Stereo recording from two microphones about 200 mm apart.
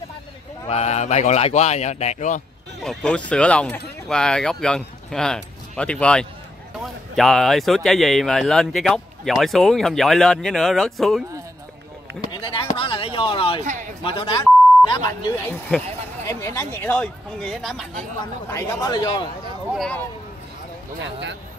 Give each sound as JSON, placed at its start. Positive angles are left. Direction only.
{"t": 0.7, "sound": "speech", "side_deg": 35}
{"t": 2.8, "sound": "speech", "side_deg": 0}
{"t": 12.2, "sound": "speech", "side_deg": 25}
{"t": 12.6, "sound": "a sound", "side_deg": 25}
{"t": 14.0, "sound": "speech", "side_deg": 25}
{"t": 18.5, "sound": "speech", "side_deg": 15}
{"t": 19.7, "sound": "speech", "side_deg": 0}
{"t": 21.0, "sound": "speech", "side_deg": -65}